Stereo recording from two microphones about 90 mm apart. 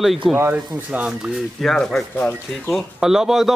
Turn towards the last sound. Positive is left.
turn(degrees=-5)  # may be behind; listen again after turning